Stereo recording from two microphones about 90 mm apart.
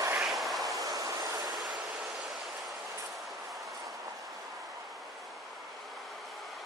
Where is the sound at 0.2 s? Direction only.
Centre (ahead or behind).